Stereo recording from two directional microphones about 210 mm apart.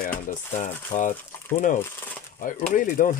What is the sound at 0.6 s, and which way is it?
Speech, 35° left (ahead or behind).